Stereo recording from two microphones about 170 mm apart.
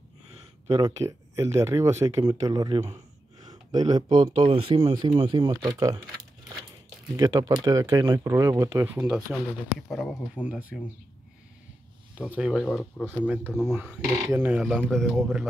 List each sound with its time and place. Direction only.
0.7 s speech: 20° right (ahead or behind)
7.2 s a man's voice: 20° right (ahead or behind); by 10.4 s 5° left (ahead or behind)
10.4 s speech: 10° right (ahead or behind)
12.2 s a man's voice: 5° right (ahead or behind)
12.7 s speech: 10° left (ahead or behind)
13.7 s a man's voice: 5° right (ahead or behind)